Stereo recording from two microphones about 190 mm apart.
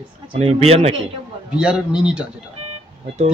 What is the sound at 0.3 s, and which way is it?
Speech, 30° right (ahead or behind).